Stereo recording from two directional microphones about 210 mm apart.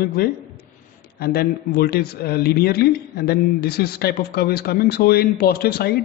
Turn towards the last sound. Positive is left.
turn(degrees=45)  # may be behind; listen again after turning